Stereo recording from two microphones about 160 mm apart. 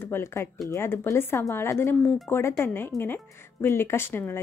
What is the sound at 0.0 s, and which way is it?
Speech, 15° left (ahead or behind).